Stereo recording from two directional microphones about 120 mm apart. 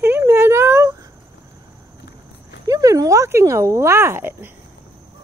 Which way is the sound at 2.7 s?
30° right (ahead or behind).